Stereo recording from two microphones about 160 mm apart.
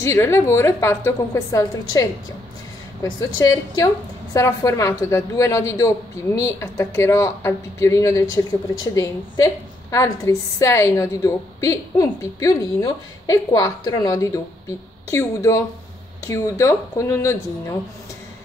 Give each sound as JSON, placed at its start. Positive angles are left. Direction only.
{"t": 0.0, "sound": "a woman's voice", "side_deg": 15}
{"t": 3.3, "sound": "a woman's voice", "side_deg": 20}